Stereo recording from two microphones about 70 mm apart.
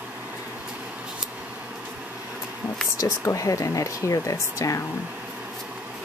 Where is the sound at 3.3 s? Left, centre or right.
Left.